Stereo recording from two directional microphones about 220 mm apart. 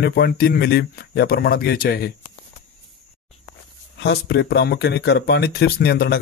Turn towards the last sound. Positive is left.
turn(degrees=45)  # may be behind; listen again after turning